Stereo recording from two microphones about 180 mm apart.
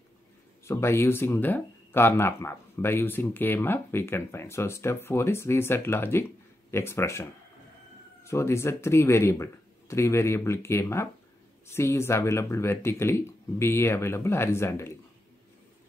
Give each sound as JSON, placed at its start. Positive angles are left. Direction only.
{"t": 0.7, "sound": "speech", "side_deg": 15}